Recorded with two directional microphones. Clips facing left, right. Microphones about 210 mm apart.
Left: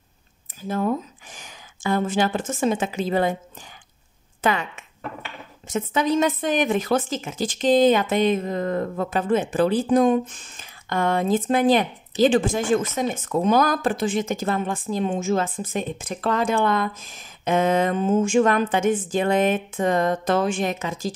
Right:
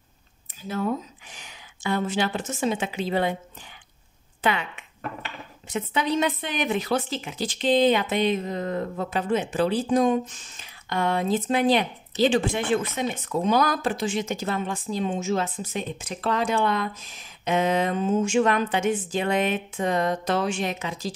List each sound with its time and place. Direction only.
1.3 s a woman's voice: 45° left (ahead or behind)
4.4 s speech: 45° left (ahead or behind)